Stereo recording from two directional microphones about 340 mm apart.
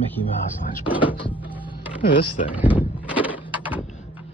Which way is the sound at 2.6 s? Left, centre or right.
Centre.